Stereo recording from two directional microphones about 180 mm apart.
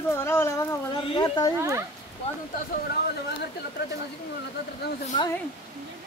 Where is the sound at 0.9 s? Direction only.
25° left (ahead or behind).